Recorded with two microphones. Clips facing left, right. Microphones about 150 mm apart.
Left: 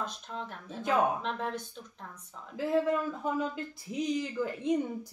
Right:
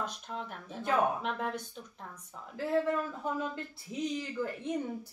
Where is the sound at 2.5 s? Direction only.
15° left (ahead or behind).